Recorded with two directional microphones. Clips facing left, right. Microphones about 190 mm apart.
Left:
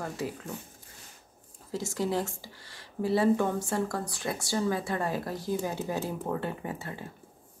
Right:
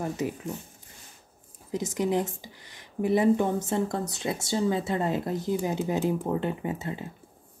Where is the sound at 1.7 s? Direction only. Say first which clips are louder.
Right 3 dB; 20° right (ahead or behind).